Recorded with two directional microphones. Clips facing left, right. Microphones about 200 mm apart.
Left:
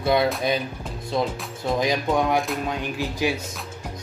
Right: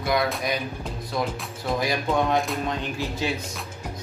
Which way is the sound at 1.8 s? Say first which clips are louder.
Left 2 dB; 15° left (ahead or behind).